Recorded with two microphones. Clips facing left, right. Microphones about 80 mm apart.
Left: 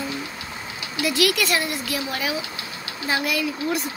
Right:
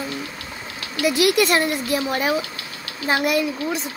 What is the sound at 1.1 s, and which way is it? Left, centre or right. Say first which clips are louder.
A woman's voice: right 4 dB; right.